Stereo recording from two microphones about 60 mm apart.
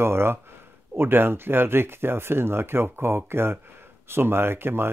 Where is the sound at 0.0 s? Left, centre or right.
Right.